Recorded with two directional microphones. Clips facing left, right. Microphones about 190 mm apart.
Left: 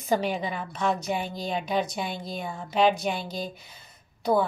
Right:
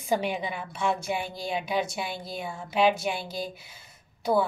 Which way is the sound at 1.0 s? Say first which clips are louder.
Left 1 dB; 10° right (ahead or behind).